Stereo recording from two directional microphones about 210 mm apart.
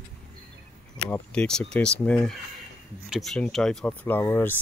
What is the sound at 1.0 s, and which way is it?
Speech, 5° left (ahead or behind).